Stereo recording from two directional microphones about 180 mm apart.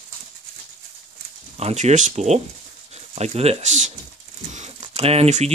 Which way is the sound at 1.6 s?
35° right (ahead or behind).